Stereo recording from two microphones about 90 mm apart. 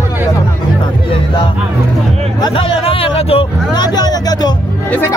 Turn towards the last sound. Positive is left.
turn(degrees=50)  # may be behind; listen again after turning